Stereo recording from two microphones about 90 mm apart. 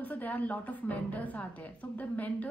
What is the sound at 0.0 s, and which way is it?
A woman's voice, 20° left (ahead or behind).